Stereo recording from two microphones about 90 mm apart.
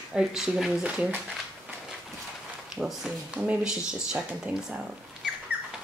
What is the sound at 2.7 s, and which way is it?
Speech, 5° right (ahead or behind).